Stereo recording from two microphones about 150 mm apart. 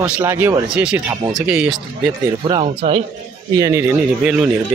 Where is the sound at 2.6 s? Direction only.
45° right (ahead or behind).